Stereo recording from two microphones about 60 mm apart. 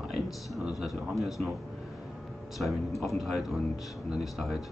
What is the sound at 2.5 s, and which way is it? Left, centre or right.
A man's voice, centre.